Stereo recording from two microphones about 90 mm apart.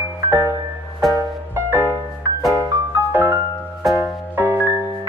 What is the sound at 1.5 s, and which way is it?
Music, 25° right (ahead or behind).